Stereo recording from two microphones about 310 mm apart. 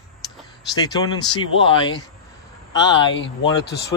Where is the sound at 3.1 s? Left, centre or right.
Left.